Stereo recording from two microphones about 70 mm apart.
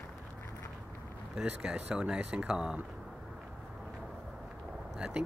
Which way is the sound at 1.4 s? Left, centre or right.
Centre.